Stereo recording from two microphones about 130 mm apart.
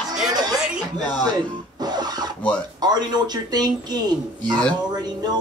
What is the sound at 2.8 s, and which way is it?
Speech, 30° right (ahead or behind).